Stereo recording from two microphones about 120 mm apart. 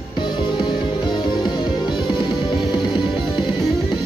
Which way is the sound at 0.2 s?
40° left (ahead or behind).